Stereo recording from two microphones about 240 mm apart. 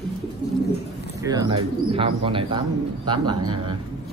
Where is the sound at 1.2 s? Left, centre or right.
Centre.